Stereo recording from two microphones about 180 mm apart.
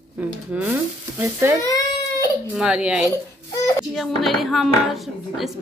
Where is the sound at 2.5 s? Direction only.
5° right (ahead or behind).